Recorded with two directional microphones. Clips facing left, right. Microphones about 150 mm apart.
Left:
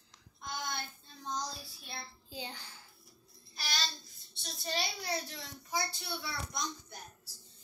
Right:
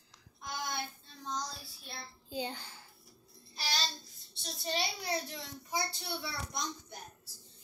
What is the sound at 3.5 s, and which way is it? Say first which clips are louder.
A child's voice: right 2 dB; 30° right (ahead or behind).